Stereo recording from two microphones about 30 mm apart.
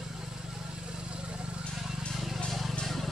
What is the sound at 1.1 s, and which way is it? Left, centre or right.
Vehicle, right.